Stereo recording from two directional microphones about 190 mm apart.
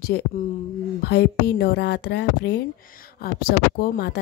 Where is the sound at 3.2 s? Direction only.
55° left (ahead or behind).